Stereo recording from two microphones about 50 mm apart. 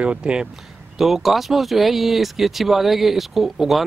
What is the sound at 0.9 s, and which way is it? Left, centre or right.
Speech, centre.